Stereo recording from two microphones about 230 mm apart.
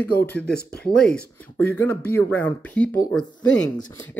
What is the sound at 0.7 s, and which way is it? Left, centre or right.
Speech, left.